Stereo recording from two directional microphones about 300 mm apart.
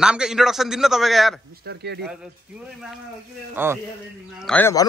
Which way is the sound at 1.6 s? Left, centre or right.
Right.